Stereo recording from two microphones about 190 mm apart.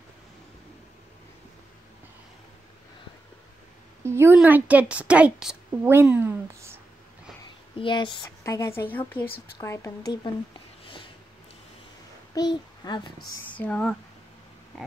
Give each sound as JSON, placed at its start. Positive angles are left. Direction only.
{"t": 4.0, "sound": "a woman's voice", "side_deg": -15}
{"t": 7.7, "sound": "speech", "side_deg": 25}
{"t": 12.4, "sound": "a child's voice", "side_deg": 20}
{"t": 13.5, "sound": "speech", "side_deg": 5}